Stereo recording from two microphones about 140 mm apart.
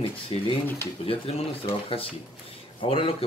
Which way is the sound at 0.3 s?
40° left (ahead or behind).